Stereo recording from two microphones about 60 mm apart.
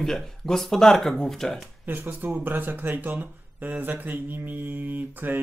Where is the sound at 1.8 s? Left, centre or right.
Right.